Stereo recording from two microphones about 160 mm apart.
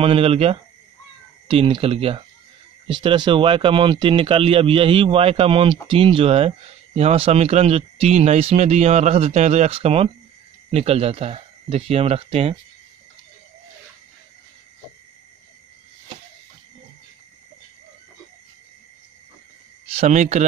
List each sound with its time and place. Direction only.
0.0 s speech: 35° right (ahead or behind)
20.0 s speech: 45° right (ahead or behind)